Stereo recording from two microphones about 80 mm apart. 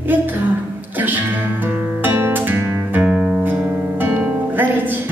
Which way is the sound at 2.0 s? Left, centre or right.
Right.